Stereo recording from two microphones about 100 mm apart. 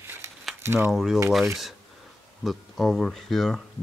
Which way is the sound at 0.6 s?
25° right (ahead or behind).